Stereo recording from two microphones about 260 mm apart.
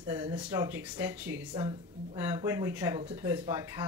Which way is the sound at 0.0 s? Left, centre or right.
Centre.